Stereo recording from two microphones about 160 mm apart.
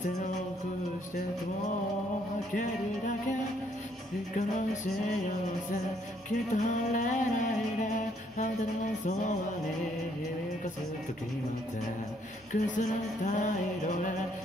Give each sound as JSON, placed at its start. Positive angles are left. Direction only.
{"t": 2.5, "sound": "music", "side_deg": 55}
{"t": 4.4, "sound": "music", "side_deg": 50}
{"t": 6.5, "sound": "music", "side_deg": 50}
{"t": 8.4, "sound": "speech", "side_deg": 55}
{"t": 12.5, "sound": "music", "side_deg": 50}